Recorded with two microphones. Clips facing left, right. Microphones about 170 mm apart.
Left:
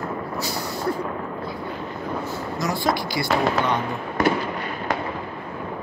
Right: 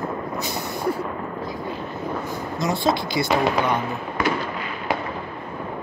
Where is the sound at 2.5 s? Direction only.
20° right (ahead or behind).